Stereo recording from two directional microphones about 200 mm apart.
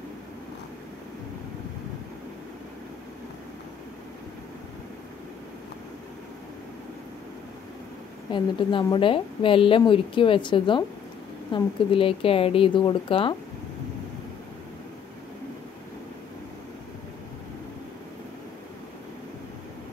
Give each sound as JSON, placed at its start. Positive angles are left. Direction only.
{"t": 8.3, "sound": "a woman's voice", "side_deg": 25}